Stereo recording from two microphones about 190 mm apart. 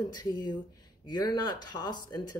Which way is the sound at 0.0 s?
20° left (ahead or behind).